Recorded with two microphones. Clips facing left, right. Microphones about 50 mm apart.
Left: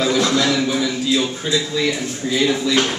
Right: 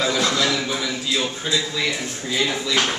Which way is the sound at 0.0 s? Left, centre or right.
Centre.